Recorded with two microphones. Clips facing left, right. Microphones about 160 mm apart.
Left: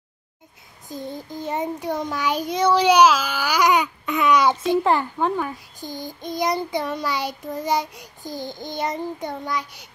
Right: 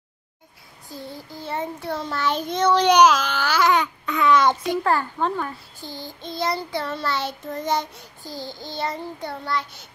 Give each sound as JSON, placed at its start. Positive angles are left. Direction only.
{"t": 0.8, "sound": "a child's voice", "side_deg": 20}